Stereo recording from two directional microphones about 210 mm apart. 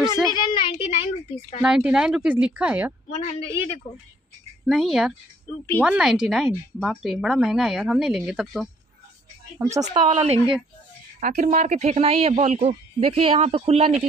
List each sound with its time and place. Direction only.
0.3 s a sound: 20° left (ahead or behind)
1.6 s a woman's voice: 5° right (ahead or behind)
3.1 s a woman's voice: 30° left (ahead or behind)
4.6 s a woman's voice: centre (ahead or behind)
9.8 s speech: 20° right (ahead or behind)